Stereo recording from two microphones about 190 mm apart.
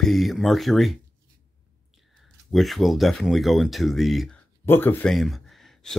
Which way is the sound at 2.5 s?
Centre (ahead or behind).